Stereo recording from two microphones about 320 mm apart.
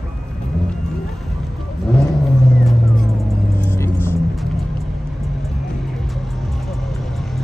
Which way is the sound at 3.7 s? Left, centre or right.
Centre.